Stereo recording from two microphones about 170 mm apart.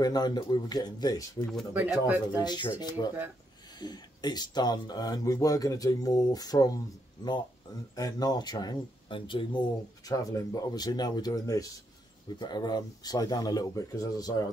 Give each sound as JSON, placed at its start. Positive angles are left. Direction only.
{"t": 0.0, "sound": "speech", "side_deg": 25}
{"t": 1.7, "sound": "speech", "side_deg": -10}
{"t": 2.3, "sound": "speech", "side_deg": 25}
{"t": 7.9, "sound": "speech", "side_deg": 20}